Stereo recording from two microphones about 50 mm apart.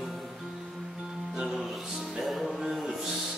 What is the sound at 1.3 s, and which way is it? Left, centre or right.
Music, centre.